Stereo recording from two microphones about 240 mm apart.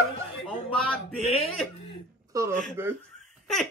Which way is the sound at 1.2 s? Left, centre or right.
Left.